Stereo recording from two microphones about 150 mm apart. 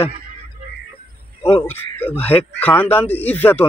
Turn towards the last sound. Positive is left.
turn(degrees=10)  # may be behind; listen again after turning